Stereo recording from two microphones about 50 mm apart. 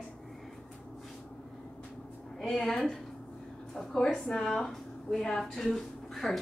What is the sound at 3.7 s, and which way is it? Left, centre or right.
A woman's voice, centre.